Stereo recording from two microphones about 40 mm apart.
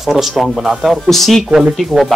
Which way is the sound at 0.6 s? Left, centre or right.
Centre.